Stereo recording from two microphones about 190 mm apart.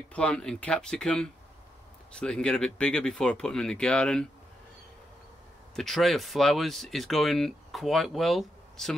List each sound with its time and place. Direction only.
0.1 s speech: 5° left (ahead or behind)
5.8 s speech: centre (ahead or behind)